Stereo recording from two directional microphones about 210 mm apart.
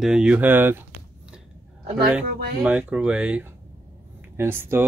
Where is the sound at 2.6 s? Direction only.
5° right (ahead or behind).